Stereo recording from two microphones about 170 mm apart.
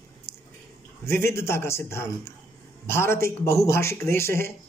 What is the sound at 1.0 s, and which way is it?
Speech, 15° left (ahead or behind).